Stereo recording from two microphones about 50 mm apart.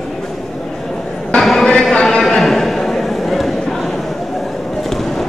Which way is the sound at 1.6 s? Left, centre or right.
Centre.